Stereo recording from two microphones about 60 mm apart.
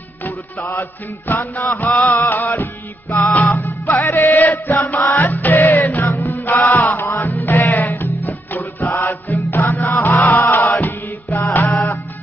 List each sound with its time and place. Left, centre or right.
0.2 s music: left
3.8 s music: left